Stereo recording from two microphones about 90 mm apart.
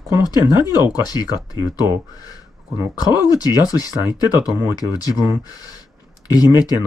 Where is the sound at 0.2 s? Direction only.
50° left (ahead or behind).